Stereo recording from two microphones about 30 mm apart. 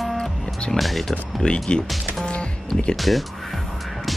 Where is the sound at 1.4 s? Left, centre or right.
Left.